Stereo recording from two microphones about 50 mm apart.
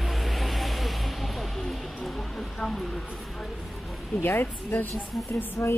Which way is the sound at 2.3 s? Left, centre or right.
Centre.